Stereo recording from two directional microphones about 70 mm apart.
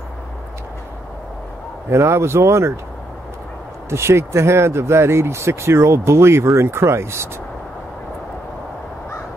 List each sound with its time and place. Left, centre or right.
1.9 s speech: right
3.9 s speech: right